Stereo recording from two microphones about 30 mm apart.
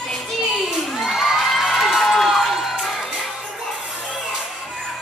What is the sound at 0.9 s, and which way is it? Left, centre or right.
Crowd, centre.